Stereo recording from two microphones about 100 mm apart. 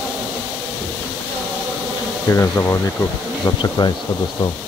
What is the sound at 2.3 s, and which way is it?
Speech, 30° left (ahead or behind).